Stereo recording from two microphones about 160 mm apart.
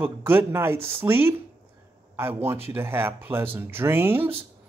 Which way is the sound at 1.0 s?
15° right (ahead or behind).